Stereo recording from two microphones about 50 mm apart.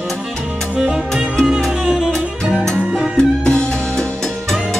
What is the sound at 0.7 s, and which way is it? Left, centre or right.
Music, centre.